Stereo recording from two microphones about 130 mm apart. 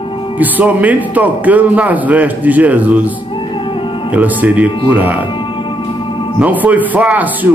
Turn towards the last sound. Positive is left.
turn(degrees=-10)  # may be behind; listen again after turning